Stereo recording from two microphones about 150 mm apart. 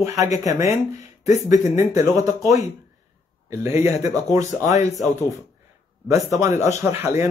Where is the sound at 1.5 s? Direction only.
20° right (ahead or behind).